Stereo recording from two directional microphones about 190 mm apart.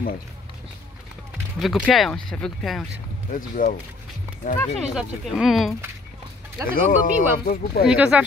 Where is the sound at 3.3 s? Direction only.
45° left (ahead or behind).